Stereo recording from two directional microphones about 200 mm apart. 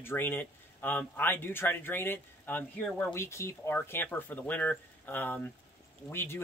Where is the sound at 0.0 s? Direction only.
10° left (ahead or behind).